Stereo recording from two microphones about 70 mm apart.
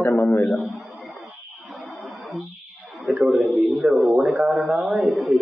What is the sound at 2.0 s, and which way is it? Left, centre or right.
Music, centre.